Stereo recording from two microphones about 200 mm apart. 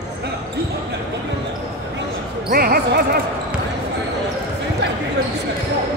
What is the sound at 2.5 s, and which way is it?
Speech, 50° right (ahead or behind).